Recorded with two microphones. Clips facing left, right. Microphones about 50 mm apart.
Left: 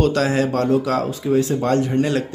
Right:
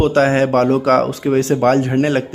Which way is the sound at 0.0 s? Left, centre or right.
Right.